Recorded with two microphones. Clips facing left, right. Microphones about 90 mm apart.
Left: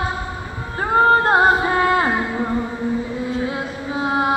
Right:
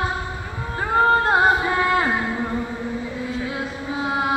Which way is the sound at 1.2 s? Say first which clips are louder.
Left 2 dB; 40° left (ahead or behind).